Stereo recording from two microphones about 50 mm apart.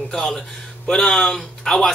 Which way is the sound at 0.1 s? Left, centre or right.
Centre.